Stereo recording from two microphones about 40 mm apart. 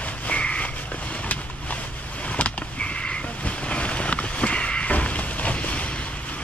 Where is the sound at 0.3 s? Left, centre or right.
Left.